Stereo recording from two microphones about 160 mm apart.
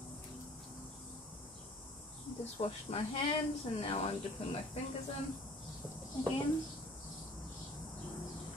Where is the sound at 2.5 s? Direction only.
35° left (ahead or behind).